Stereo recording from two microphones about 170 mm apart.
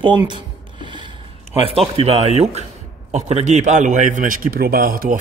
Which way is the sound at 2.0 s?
35° right (ahead or behind).